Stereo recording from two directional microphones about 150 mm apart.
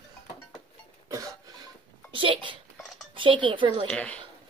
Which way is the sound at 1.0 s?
25° right (ahead or behind).